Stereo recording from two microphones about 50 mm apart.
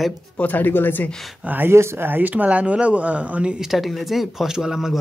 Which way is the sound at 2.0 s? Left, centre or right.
Right.